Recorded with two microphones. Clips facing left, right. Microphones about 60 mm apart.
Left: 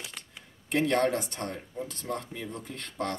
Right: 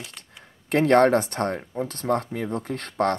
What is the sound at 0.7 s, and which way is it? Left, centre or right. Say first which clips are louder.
Speech: right 8 dB; right.